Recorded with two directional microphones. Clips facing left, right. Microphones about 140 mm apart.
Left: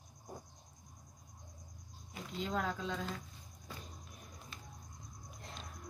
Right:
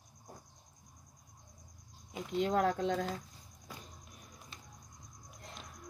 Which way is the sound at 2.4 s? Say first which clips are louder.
Right 7 dB; 60° right (ahead or behind).